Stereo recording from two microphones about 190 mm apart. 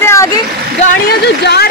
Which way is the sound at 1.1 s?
60° left (ahead or behind).